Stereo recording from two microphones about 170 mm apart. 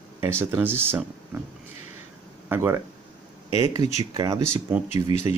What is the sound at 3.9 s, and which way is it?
Speech, 20° right (ahead or behind).